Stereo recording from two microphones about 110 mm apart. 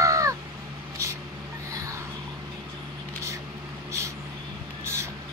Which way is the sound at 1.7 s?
30° right (ahead or behind).